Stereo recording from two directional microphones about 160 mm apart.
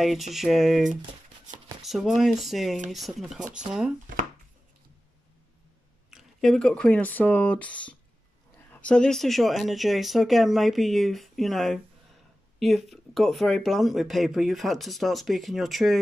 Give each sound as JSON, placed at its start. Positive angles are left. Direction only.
{"t": 0.3, "sound": "speech", "side_deg": 0}
{"t": 6.0, "sound": "speech", "side_deg": 0}